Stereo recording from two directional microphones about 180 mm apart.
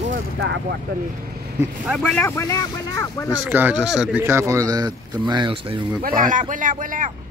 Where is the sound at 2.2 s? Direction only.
15° left (ahead or behind).